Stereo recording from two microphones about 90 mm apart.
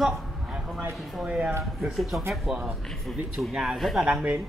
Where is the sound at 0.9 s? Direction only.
Centre (ahead or behind).